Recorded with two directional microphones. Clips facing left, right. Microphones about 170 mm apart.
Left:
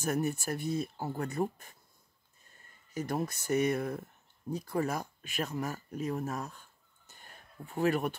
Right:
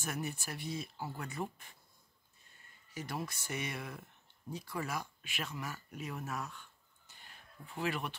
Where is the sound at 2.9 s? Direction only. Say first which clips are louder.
Left 7 dB; 45° left (ahead or behind).